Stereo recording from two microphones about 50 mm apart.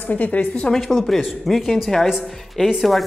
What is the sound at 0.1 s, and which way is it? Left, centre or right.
Speech, left.